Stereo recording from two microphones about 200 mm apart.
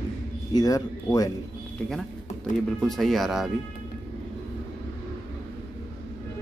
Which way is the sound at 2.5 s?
Centre (ahead or behind).